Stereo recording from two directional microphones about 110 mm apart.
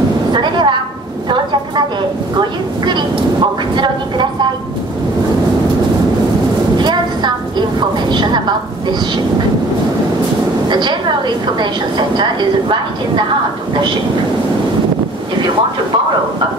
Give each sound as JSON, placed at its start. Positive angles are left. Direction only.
{"t": 0.3, "sound": "a sound", "side_deg": -45}
{"t": 2.8, "sound": "vehicle", "side_deg": -45}
{"t": 3.7, "sound": "a woman's voice", "side_deg": -45}
{"t": 6.8, "sound": "a sound", "side_deg": -40}
{"t": 8.1, "sound": "a woman's voice", "side_deg": -40}
{"t": 10.7, "sound": "a woman's voice", "side_deg": -45}